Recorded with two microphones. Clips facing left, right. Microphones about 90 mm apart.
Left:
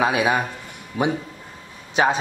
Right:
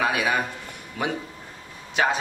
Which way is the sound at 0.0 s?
20° left (ahead or behind).